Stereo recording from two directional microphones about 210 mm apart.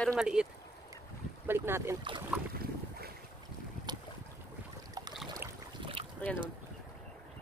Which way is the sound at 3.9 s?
20° right (ahead or behind).